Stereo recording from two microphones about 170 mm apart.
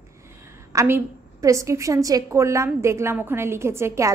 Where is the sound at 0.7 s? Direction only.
15° right (ahead or behind).